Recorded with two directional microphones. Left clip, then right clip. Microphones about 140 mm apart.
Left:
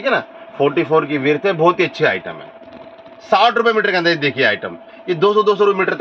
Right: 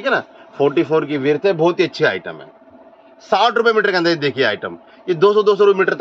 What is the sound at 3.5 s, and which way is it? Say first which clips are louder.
A man's voice: even; 15° right (ahead or behind).